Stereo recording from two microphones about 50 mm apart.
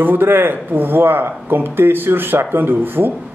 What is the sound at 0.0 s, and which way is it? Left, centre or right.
Speech, right.